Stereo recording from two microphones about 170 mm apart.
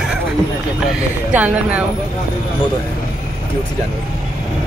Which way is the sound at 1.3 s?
10° right (ahead or behind).